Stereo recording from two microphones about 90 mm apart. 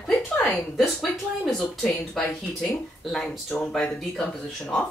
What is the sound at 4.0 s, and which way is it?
Speech, 5° left (ahead or behind).